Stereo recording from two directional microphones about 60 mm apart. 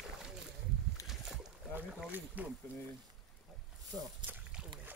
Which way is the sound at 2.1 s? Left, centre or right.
Right.